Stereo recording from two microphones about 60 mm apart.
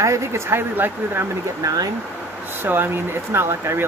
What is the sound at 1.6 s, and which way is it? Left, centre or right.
Speech, right.